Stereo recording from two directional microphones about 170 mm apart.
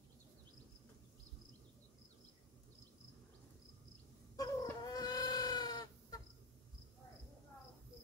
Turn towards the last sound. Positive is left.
turn(degrees=25)  # may be behind; listen again after turning